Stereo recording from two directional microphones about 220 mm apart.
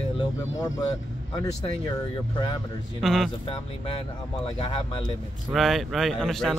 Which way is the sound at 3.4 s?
25° left (ahead or behind).